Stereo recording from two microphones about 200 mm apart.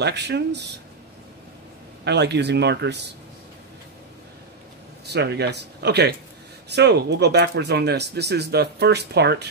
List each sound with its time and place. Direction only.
0.0 s speech: 55° right (ahead or behind)
2.0 s speech: 55° right (ahead or behind)
5.0 s speech: 55° right (ahead or behind)